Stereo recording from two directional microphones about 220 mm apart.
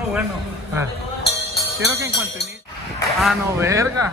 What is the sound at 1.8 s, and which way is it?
Speech, 15° right (ahead or behind).